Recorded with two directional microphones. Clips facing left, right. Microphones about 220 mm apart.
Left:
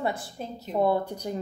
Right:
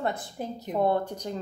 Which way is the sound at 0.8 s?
10° left (ahead or behind).